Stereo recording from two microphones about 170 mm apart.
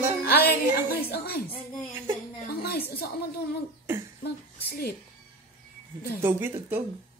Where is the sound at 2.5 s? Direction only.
65° left (ahead or behind).